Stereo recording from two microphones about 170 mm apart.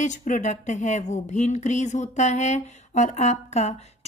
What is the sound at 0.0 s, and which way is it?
Speech, 45° left (ahead or behind).